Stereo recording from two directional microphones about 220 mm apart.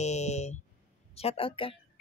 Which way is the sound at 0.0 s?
30° left (ahead or behind).